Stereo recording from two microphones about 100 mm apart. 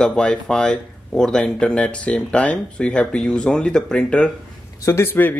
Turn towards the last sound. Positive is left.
turn(degrees=20)  # may be behind; listen again after turning